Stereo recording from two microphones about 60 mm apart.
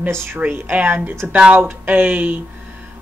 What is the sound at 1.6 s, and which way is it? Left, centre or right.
Speech, right.